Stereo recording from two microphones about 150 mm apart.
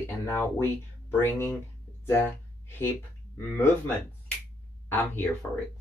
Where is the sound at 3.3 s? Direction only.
15° left (ahead or behind).